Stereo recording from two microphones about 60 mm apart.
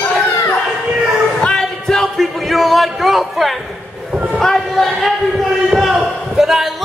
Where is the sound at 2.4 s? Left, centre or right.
Centre.